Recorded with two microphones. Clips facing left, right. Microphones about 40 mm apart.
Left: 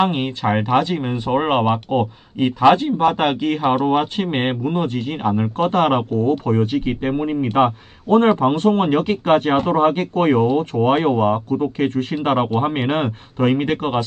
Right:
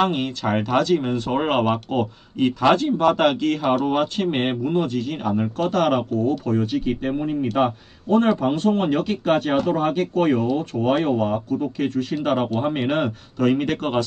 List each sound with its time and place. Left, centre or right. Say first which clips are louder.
0.0 s a man's voice: left 2 dB; left